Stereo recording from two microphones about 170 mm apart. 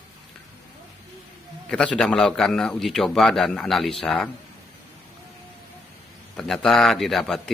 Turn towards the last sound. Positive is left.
turn(degrees=0)  # may be behind; listen again after turning